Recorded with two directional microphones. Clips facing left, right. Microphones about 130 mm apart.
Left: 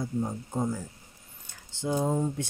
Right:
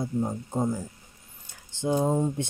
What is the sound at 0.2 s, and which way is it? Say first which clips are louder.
Speech: right 3 dB; 20° right (ahead or behind).